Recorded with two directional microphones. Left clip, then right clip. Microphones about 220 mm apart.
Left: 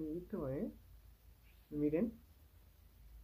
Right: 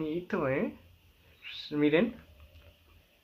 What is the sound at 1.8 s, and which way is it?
Speech, 15° right (ahead or behind).